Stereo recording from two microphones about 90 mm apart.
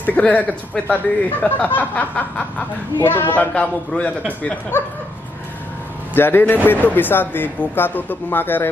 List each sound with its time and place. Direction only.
0.0 s snicker: 15° left (ahead or behind)
3.0 s speech: 25° left (ahead or behind)
4.3 s snicker: 15° left (ahead or behind)
6.1 s speech: 25° left (ahead or behind)